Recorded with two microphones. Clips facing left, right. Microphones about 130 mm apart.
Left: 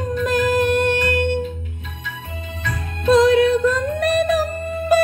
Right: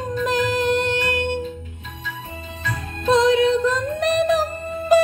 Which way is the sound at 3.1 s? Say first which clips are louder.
Left 3 dB; 20° right (ahead or behind).